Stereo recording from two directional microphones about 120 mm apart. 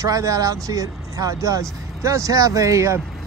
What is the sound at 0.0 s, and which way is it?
Speech, 30° right (ahead or behind).